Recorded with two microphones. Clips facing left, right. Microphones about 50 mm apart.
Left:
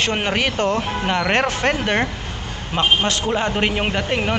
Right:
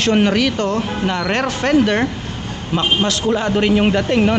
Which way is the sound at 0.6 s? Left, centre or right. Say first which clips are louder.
Right 1 dB; centre.